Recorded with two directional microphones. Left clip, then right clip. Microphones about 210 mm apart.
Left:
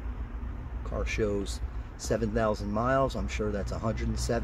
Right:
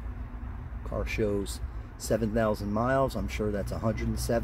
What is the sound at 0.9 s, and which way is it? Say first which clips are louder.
Speech: right 1 dB; 10° right (ahead or behind).